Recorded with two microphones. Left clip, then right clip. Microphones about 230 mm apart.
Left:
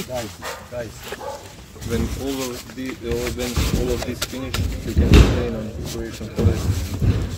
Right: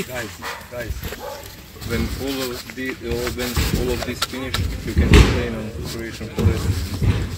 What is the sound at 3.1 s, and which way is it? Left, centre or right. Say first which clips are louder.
Rub: left 1 dB; left.